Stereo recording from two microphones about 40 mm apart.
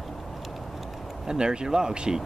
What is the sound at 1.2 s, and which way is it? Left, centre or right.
Speech, centre.